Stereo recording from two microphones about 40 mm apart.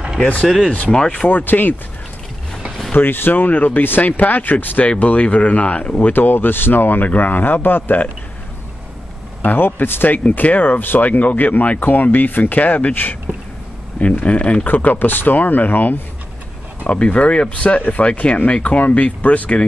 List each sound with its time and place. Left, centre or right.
0.2 s speech: left
0.9 s speech: centre
1.2 s speech: left
2.9 s speech: left
4.9 s speech: left
6.1 s speech: left
9.4 s speech: left
11.8 s speech: left
14.2 s speech: left
14.7 s speech: left
16.8 s speech: left